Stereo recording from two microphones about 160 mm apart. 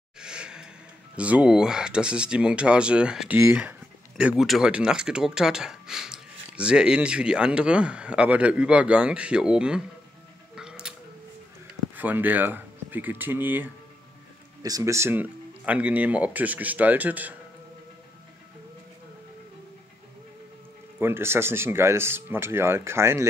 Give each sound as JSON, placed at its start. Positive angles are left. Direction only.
{"t": 0.2, "sound": "a sound", "side_deg": -5}
{"t": 1.1, "sound": "speech", "side_deg": -10}
{"t": 10.5, "sound": "music", "side_deg": -5}
{"t": 11.9, "sound": "speech", "side_deg": -10}
{"t": 21.0, "sound": "speech", "side_deg": -15}